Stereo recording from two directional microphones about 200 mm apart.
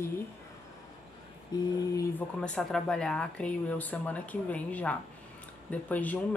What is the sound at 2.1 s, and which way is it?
Speech, 5° left (ahead or behind).